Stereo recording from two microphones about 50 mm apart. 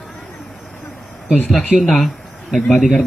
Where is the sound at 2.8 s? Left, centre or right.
Left.